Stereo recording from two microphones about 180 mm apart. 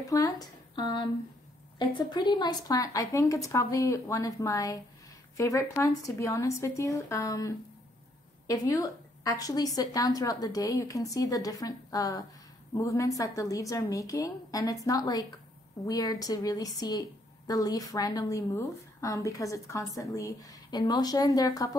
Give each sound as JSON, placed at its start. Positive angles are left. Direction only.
{"t": 0.0, "sound": "a woman's voice", "side_deg": 20}